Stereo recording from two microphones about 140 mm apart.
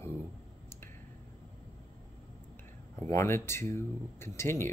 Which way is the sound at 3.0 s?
20° left (ahead or behind).